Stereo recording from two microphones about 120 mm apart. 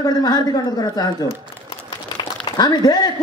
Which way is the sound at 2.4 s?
35° left (ahead or behind).